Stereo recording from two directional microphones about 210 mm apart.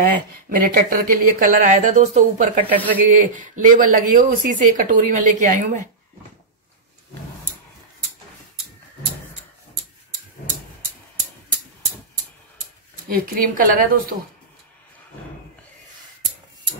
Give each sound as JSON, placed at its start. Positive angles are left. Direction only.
{"t": 0.0, "sound": "speech", "side_deg": -45}
{"t": 13.1, "sound": "a woman's voice", "side_deg": -45}